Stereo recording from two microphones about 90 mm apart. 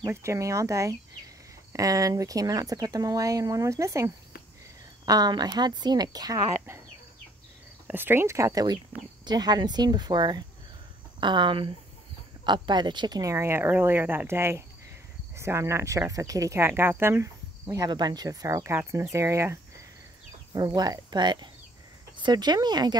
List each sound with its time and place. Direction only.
0.0 s speech: 30° right (ahead or behind)
5.0 s speech: 45° right (ahead or behind)
7.8 s speech: 25° right (ahead or behind)
9.2 s speech: 50° right (ahead or behind); by 11.7 s 70° right (ahead or behind)
12.4 s speech: 55° right (ahead or behind)
13.2 s speech: 35° right (ahead or behind)
17.7 s speech: 50° right (ahead or behind); by 19.6 s 30° right (ahead or behind)
20.5 s speech: 50° right (ahead or behind)